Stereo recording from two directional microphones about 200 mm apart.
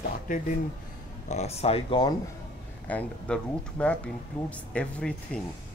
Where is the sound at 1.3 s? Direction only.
30° left (ahead or behind).